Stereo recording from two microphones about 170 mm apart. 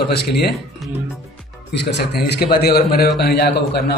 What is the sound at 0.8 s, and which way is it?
Speech, centre (ahead or behind).